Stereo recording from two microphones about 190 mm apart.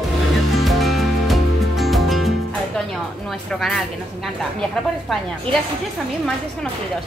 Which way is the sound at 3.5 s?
Centre (ahead or behind).